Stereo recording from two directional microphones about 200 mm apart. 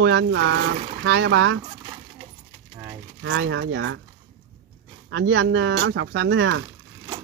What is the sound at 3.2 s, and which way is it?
Speech, 65° right (ahead or behind).